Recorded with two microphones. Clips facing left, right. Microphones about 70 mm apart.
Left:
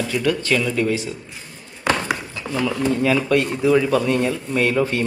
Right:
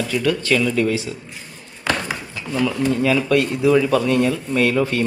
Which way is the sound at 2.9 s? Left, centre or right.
Left.